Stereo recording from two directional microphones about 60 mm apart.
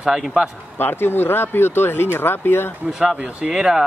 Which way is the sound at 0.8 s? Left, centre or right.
Left.